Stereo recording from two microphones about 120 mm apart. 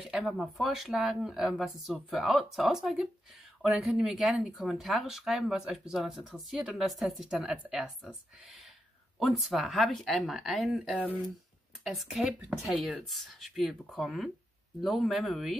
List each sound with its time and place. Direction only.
0.1 s speech: centre (ahead or behind)
9.2 s speech: centre (ahead or behind)